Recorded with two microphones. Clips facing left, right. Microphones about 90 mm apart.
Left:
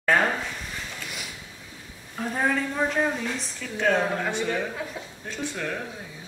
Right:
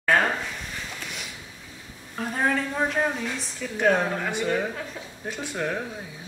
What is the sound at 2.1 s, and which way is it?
Speech, centre (ahead or behind).